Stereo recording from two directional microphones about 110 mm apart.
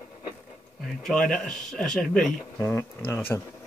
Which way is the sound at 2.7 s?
20° left (ahead or behind).